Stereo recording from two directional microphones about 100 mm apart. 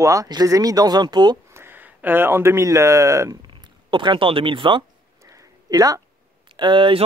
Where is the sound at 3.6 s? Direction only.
55° right (ahead or behind).